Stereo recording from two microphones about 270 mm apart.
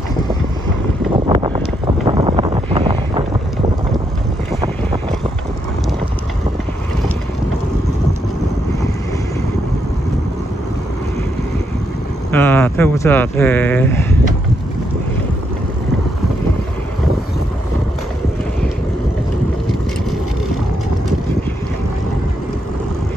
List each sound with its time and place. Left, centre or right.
1.1 s wind: centre
2.0 s wind noise: centre
12.3 s speech: centre